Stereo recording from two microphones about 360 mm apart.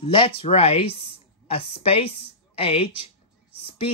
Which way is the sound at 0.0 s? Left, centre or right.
Centre.